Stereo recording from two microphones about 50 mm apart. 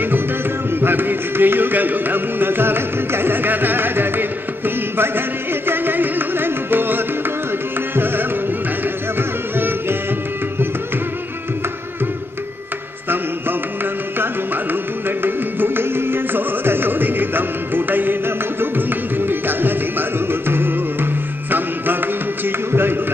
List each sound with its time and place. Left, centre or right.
0.7 s music: right
7.9 s tabla: right
9.6 s music: right
14.1 s carnatic music: right